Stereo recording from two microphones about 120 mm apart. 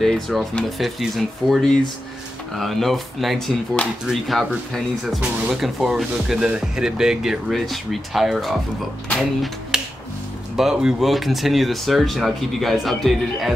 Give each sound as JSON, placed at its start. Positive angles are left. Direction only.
{"t": 0.0, "sound": "speech", "side_deg": 5}
{"t": 9.1, "sound": "music", "side_deg": 0}
{"t": 10.5, "sound": "speech", "side_deg": -5}